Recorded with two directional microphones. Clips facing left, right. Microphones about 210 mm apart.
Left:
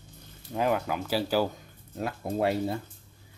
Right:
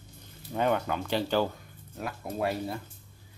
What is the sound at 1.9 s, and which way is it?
Speech, 25° left (ahead or behind).